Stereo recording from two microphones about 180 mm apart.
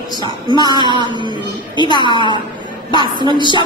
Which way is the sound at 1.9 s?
25° right (ahead or behind).